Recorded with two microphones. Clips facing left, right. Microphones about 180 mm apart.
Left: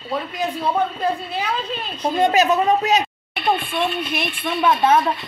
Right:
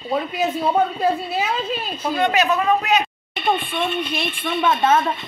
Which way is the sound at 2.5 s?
25° left (ahead or behind).